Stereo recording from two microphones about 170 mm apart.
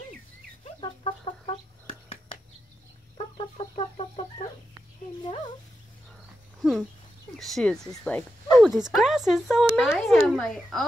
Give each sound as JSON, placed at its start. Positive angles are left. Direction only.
{"t": 0.7, "sound": "chicken", "side_deg": 30}
{"t": 5.2, "sound": "a sound", "side_deg": 30}
{"t": 6.6, "sound": "speech", "side_deg": 0}
{"t": 8.5, "sound": "speech", "side_deg": -5}